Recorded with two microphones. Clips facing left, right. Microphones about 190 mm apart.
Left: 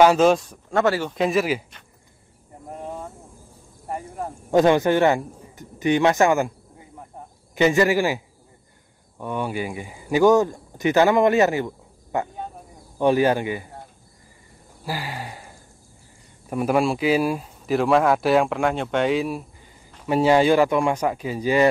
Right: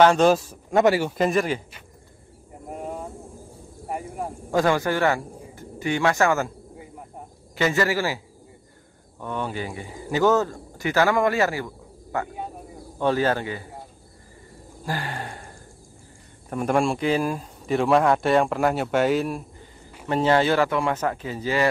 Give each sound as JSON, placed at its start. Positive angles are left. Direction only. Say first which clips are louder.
{"t": 0.0, "sound": "speech", "louder": "left 1 dB", "side_deg": 5}
{"t": 0.7, "sound": "speech", "louder": "right 2 dB", "side_deg": -15}
{"t": 1.1, "sound": "speech", "louder": "left 1 dB", "side_deg": 0}
{"t": 2.7, "sound": "a sound", "louder": "right 1 dB", "side_deg": -10}
{"t": 4.5, "sound": "speech", "louder": "left 5 dB", "side_deg": 20}
{"t": 7.5, "sound": "speech", "louder": "left 5 dB", "side_deg": 20}
{"t": 9.2, "sound": "speech", "louder": "left 3 dB", "side_deg": 10}
{"t": 14.9, "sound": "a sound", "louder": "even", "side_deg": 5}
{"t": 16.4, "sound": "speech", "louder": "left 2 dB", "side_deg": 5}
{"t": 20.1, "sound": "speech", "louder": "left 3 dB", "side_deg": 10}